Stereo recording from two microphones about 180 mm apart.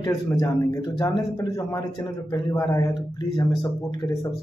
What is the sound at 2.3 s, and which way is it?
Speech, 20° left (ahead or behind).